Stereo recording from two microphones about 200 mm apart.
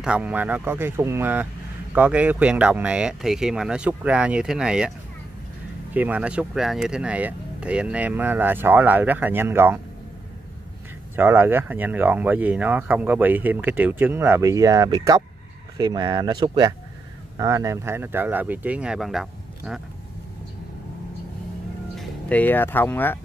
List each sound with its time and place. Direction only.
0.0 s speech: 5° right (ahead or behind)
5.9 s speech: 5° right (ahead or behind)
11.1 s speech: 10° right (ahead or behind)
21.9 s speech: 5° left (ahead or behind)